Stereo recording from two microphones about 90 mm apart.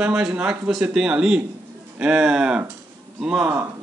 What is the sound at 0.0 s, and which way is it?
Speech, 10° right (ahead or behind).